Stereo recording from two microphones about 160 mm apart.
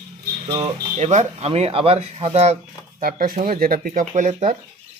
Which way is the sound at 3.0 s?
65° right (ahead or behind).